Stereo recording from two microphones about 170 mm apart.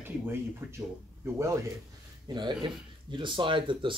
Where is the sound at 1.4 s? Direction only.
15° right (ahead or behind).